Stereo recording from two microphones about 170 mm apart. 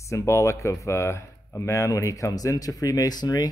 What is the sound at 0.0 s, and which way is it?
Speech, 15° left (ahead or behind).